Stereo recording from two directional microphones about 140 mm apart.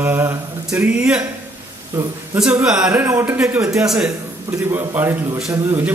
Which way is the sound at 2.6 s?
5° right (ahead or behind).